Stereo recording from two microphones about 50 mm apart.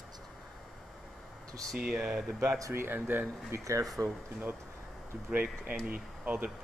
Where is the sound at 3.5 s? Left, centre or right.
Right.